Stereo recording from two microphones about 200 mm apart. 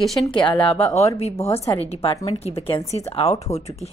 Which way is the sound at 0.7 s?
15° left (ahead or behind).